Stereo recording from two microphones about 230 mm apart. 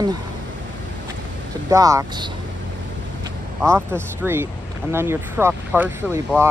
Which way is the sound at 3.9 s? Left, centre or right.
Centre.